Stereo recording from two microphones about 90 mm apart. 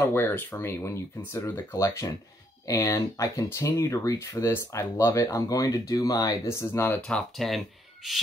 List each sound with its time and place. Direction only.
0.0 s speech: 25° left (ahead or behind)
7.0 s speech: 10° left (ahead or behind)